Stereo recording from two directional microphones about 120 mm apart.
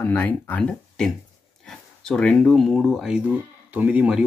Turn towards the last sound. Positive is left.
turn(degrees=-10)  # may be behind; listen again after turning